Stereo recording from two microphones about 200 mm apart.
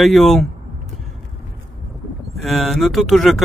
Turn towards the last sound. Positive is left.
turn(degrees=0)  # may be behind; listen again after turning